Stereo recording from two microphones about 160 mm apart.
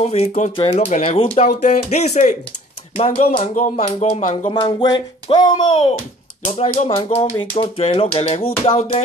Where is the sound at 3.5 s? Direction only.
45° left (ahead or behind).